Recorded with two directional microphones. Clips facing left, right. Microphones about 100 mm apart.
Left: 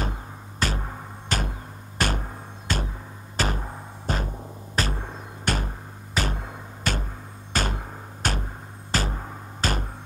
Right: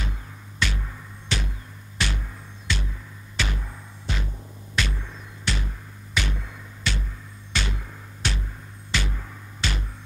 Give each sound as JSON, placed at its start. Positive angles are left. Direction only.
{"t": 0.0, "sound": "music", "side_deg": 40}